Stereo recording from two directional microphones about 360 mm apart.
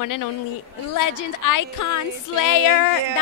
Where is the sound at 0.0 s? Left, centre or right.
Left.